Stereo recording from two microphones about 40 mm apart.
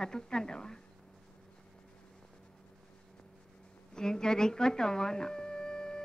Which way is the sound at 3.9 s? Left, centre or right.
Centre.